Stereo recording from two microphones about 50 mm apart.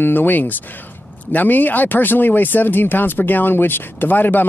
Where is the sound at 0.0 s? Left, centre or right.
Left.